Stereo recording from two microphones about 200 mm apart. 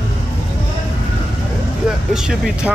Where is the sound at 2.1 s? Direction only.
5° right (ahead or behind).